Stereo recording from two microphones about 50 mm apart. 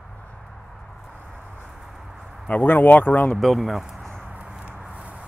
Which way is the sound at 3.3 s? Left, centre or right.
Centre.